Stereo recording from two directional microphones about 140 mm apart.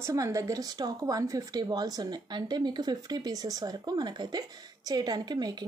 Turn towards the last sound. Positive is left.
turn(degrees=-30)  # may be behind; listen again after turning